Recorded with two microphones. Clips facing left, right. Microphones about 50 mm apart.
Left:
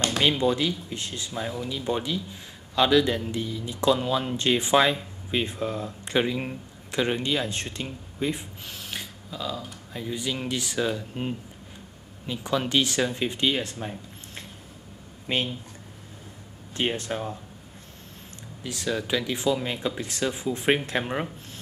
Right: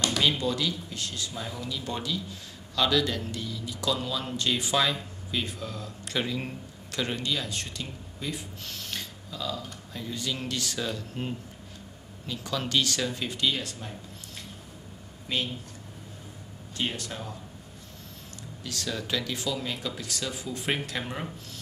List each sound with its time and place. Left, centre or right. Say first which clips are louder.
0.0 s speech: left 3 dB; left
8.6 s speech: left 2 dB; centre; by 15.5 s left
16.7 s speech: left 5 dB; left
18.6 s speech: left 5 dB; centre